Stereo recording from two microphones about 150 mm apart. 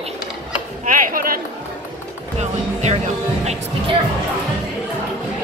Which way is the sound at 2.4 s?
50° right (ahead or behind).